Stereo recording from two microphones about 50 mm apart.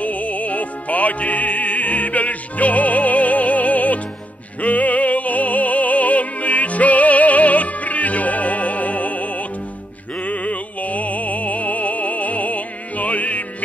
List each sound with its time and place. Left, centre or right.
0.0 s music: left